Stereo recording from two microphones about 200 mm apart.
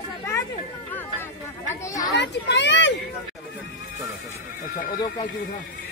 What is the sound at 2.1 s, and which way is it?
Children playing, 60° left (ahead or behind).